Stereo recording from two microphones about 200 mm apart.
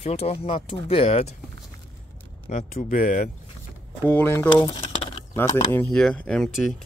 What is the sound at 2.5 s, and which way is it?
Speech, 40° left (ahead or behind).